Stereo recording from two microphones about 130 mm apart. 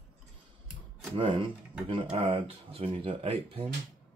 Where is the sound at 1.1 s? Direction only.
35° right (ahead or behind).